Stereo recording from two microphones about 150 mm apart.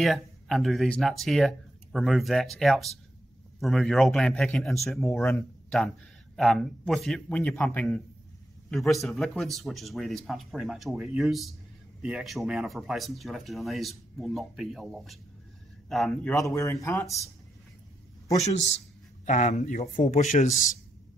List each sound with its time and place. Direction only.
0.0 s speech: centre (ahead or behind)
16.4 s speech: 20° left (ahead or behind)
18.4 s speech: 50° left (ahead or behind)